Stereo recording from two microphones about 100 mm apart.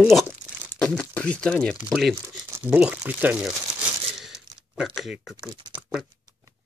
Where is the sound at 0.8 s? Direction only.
10° left (ahead or behind).